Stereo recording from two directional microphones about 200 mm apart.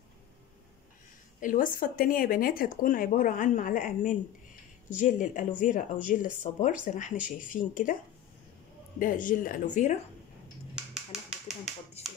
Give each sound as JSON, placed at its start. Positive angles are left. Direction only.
{"t": 1.4, "sound": "speech", "side_deg": 45}
{"t": 9.0, "sound": "speech", "side_deg": 45}
{"t": 10.7, "sound": "a sound", "side_deg": 0}